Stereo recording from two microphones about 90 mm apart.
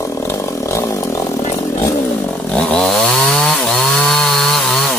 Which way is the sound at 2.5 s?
10° left (ahead or behind).